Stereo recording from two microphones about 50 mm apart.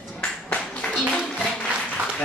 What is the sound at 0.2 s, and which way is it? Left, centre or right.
Clapping, centre.